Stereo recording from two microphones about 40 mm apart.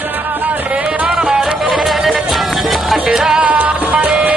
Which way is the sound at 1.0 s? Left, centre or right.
Right.